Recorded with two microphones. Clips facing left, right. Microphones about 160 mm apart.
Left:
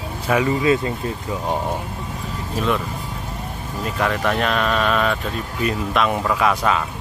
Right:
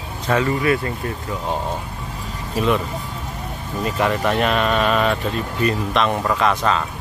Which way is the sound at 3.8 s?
Centre (ahead or behind).